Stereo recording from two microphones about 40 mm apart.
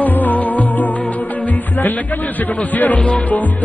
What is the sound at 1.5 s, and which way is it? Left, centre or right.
Music, left.